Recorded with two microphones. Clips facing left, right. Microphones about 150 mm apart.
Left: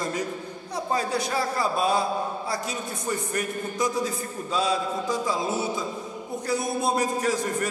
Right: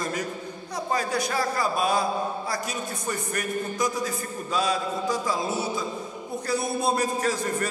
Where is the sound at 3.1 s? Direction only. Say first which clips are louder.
Left 1 dB; 25° left (ahead or behind).